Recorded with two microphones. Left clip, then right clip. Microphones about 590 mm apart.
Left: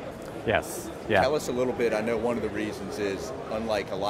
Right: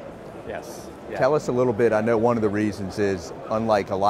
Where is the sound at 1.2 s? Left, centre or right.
Right.